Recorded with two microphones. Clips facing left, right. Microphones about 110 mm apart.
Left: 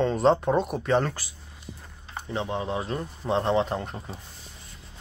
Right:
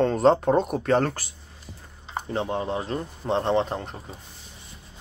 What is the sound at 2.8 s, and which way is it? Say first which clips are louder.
Speech: right 1 dB; 35° right (ahead or behind).